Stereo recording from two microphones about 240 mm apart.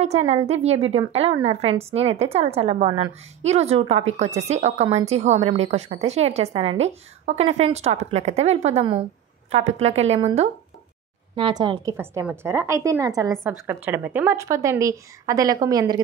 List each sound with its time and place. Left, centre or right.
0.0 s a woman's voice: right